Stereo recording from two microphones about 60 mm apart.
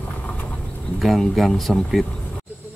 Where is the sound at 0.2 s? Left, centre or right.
Left.